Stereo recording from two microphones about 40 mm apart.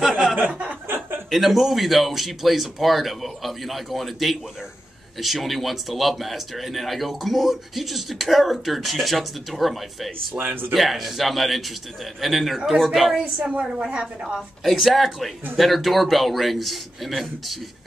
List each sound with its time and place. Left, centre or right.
0.5 s chuckle: right
0.8 s chuckle: right
1.3 s speech: centre
10.3 s speech: right
10.7 s speech: centre
13.4 s a woman's voice: right
13.7 s a woman's voice: right
14.6 s speech: centre